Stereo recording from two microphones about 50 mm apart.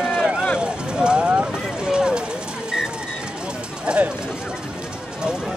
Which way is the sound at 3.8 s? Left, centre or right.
Right.